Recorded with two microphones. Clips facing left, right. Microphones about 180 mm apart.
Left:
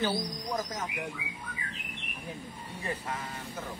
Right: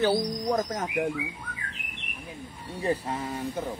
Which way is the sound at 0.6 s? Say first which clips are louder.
Right 7 dB; 55° right (ahead or behind).